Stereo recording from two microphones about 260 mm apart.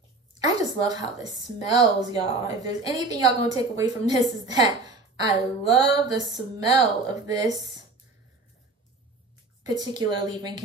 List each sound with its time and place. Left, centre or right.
0.5 s a woman's voice: centre
9.7 s a woman's voice: centre